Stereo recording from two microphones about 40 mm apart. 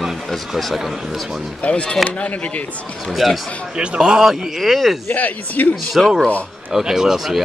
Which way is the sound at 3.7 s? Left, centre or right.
Right.